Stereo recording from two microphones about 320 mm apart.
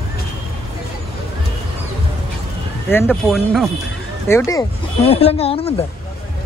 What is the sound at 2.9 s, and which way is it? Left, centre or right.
Speech, centre.